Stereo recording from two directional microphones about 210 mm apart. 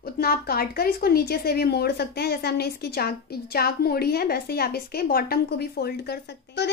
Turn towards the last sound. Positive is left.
turn(degrees=55)  # may be behind; listen again after turning